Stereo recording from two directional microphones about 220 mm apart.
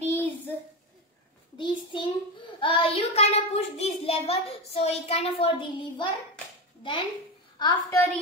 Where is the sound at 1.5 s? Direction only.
20° left (ahead or behind).